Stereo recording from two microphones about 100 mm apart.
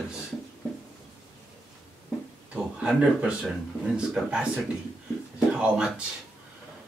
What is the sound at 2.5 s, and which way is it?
Speech, 10° right (ahead or behind).